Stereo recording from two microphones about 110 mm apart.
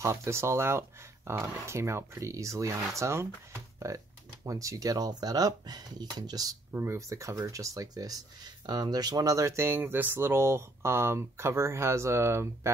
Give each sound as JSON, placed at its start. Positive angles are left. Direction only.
{"t": 0.0, "sound": "speech", "side_deg": -25}
{"t": 6.7, "sound": "speech", "side_deg": -25}